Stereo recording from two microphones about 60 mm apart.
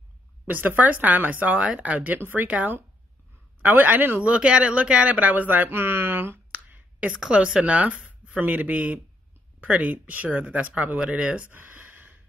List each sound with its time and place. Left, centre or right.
0.5 s speech: right
4.2 s speech: centre; by 6.4 s right
6.5 s speech: right